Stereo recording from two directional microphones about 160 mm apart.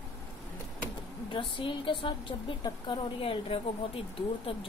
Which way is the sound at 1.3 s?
30° left (ahead or behind).